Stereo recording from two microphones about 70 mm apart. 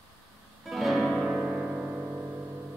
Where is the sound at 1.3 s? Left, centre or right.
Right.